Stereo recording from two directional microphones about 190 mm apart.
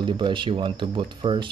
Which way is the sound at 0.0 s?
25° right (ahead or behind).